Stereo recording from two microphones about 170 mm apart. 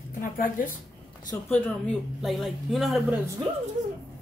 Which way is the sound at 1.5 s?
Centre (ahead or behind).